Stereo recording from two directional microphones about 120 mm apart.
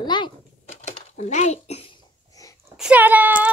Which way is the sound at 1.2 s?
70° left (ahead or behind).